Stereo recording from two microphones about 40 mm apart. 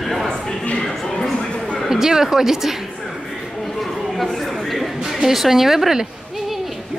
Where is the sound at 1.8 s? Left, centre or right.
Centre.